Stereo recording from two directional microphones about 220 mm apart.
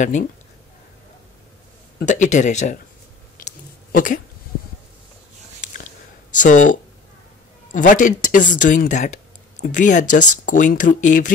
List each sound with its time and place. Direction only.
2.0 s speech: 35° left (ahead or behind)
3.9 s speech: 35° left (ahead or behind)
6.3 s speech: 35° left (ahead or behind)